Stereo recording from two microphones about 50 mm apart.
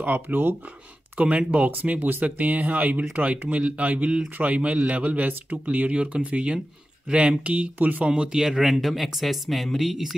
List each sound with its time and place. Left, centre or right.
0.0 s speech: right
1.1 s a man's voice: right
8.0 s speech: centre